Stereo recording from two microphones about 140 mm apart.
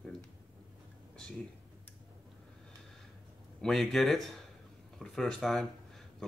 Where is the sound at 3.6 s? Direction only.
5° left (ahead or behind).